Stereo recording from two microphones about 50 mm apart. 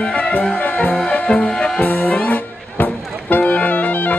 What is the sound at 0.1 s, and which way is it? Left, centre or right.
Music, left.